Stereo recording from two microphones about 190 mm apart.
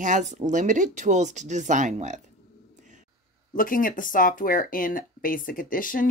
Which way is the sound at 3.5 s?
45° left (ahead or behind).